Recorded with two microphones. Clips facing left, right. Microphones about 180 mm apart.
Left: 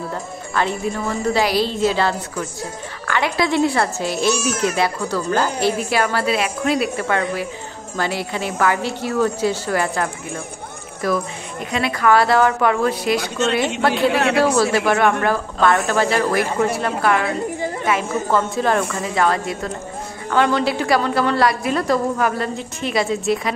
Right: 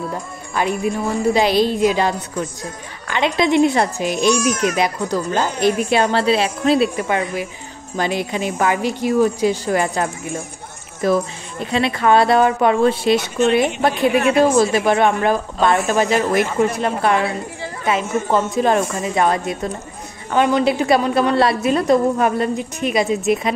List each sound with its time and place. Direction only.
0.6 s a woman's voice: 15° right (ahead or behind)
14.1 s speech: 80° left
14.9 s a woman's voice: 20° right (ahead or behind)
18.3 s a woman's voice: 20° right (ahead or behind)